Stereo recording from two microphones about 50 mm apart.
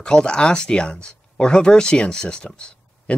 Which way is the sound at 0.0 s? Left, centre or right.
Centre.